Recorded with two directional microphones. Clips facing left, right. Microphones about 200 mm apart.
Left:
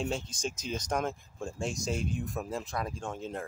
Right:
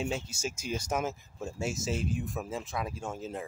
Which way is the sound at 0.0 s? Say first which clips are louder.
Even; 5° right (ahead or behind).